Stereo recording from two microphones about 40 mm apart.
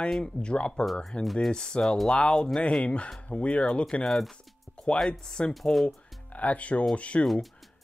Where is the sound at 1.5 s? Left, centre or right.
Left.